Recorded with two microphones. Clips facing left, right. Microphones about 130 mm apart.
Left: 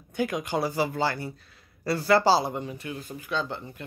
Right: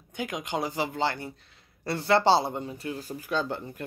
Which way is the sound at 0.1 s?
15° right (ahead or behind).